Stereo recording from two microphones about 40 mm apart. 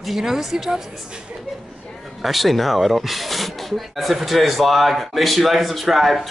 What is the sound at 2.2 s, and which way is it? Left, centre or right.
Speech, centre.